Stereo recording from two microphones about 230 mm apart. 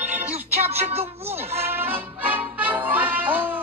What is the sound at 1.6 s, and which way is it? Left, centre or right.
Music, centre.